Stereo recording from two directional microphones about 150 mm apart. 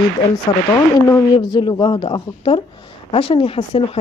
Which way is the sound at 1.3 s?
30° left (ahead or behind).